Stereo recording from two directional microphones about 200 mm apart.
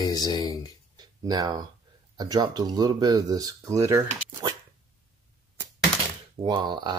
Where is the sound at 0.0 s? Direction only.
20° left (ahead or behind).